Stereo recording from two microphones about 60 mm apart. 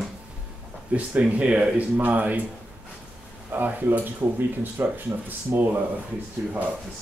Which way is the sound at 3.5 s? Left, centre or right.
Right.